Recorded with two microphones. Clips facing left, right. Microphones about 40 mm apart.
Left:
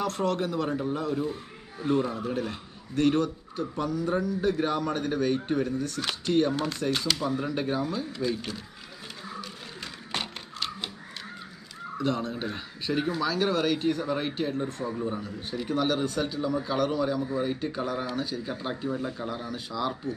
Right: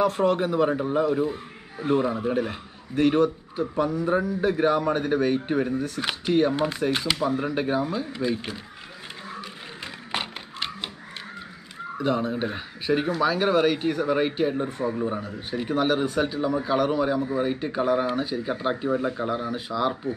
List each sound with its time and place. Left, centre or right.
0.0 s a man's voice: centre
10.1 s a sound: right
12.0 s a man's voice: centre